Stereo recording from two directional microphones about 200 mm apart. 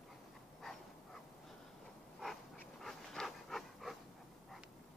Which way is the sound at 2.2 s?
Centre (ahead or behind).